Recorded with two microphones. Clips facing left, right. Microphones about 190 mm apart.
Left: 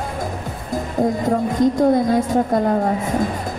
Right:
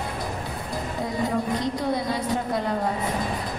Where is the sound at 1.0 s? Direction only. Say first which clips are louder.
Left 7 dB; 45° left (ahead or behind).